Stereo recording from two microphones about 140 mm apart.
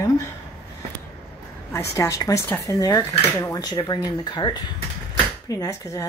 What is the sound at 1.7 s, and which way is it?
Speech, 20° left (ahead or behind).